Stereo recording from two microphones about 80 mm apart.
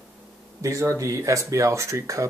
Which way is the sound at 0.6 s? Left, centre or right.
Right.